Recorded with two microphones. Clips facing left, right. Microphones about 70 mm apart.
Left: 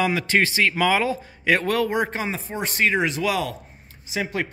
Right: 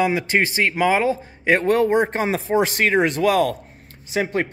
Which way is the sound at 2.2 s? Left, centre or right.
Right.